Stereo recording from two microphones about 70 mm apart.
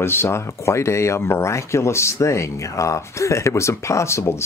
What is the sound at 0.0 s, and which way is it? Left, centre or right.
Speech, left.